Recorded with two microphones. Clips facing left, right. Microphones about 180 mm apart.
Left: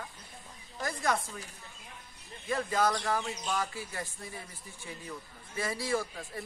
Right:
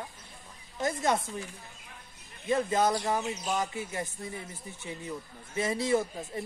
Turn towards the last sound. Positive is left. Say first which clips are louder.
# right 5 dB
turn(degrees=-20)  # may be behind; listen again after turning